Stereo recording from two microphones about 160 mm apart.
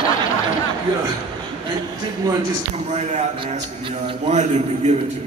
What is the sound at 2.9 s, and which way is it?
Speech, 45° right (ahead or behind).